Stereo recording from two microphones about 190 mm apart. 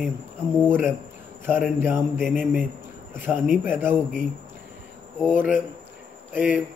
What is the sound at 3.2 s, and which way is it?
Speech, 10° right (ahead or behind).